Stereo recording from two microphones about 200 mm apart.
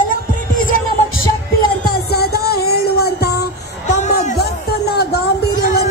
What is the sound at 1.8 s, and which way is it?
Music, 50° left (ahead or behind).